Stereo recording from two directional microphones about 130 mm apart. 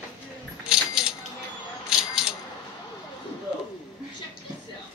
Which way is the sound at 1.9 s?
5° right (ahead or behind).